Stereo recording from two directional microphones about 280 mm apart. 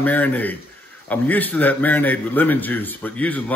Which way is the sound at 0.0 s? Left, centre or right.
Centre.